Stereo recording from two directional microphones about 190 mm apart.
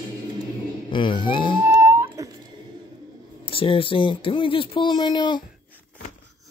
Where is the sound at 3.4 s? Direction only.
30° left (ahead or behind).